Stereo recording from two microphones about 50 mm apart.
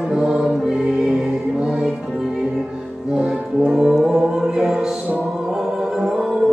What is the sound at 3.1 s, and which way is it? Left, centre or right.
Music, centre.